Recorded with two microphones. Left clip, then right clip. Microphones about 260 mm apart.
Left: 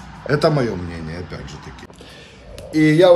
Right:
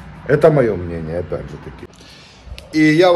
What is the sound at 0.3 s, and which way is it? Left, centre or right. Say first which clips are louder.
Speech: right 5 dB; centre.